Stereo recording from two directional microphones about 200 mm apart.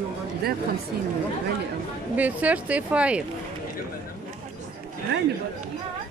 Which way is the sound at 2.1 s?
5° right (ahead or behind).